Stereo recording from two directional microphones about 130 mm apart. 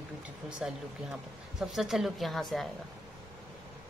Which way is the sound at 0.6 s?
5° right (ahead or behind).